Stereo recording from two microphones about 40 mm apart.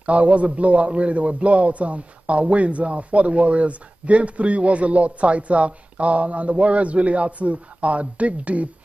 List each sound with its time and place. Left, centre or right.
0.0 s a man's voice: right